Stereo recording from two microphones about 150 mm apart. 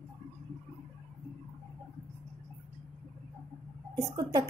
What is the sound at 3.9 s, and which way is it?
Speech, 25° right (ahead or behind).